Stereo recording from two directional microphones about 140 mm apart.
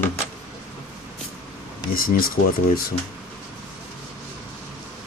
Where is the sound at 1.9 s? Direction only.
90° left.